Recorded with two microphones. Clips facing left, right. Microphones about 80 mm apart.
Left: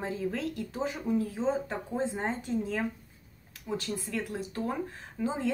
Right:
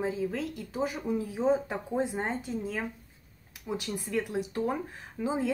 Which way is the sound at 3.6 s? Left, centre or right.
Centre.